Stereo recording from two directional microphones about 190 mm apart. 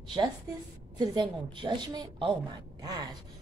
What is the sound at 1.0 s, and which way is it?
Speech, 25° right (ahead or behind).